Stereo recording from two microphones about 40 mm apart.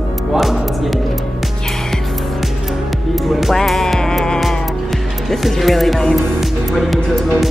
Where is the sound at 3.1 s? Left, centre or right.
Centre.